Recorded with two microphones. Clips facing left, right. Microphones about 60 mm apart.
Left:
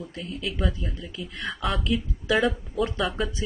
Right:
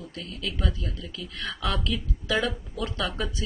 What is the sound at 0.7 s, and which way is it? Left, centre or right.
Speech, left.